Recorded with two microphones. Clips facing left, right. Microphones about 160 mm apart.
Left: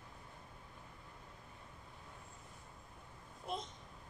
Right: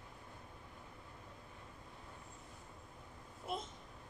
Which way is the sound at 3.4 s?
5° right (ahead or behind).